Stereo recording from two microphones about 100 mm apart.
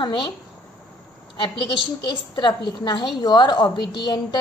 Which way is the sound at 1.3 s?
55° left (ahead or behind).